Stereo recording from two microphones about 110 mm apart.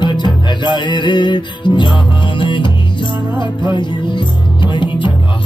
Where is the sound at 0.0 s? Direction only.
45° left (ahead or behind).